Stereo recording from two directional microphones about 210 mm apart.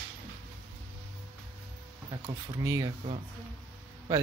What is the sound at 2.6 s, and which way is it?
Speech, 15° right (ahead or behind).